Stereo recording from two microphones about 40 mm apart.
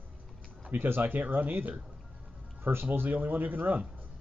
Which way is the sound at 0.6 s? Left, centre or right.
Right.